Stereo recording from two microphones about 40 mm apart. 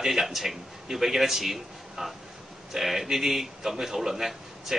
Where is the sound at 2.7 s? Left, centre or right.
Centre.